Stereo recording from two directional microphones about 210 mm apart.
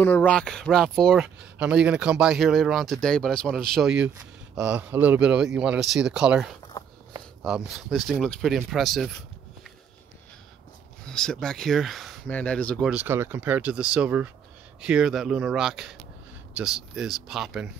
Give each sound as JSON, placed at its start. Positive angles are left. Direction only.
{"t": 0.0, "sound": "speech", "side_deg": 10}
{"t": 6.7, "sound": "a sound", "side_deg": 20}
{"t": 7.4, "sound": "speech", "side_deg": 0}
{"t": 11.1, "sound": "speech", "side_deg": 5}